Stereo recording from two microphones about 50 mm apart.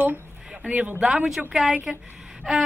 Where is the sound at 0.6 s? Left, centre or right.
Right.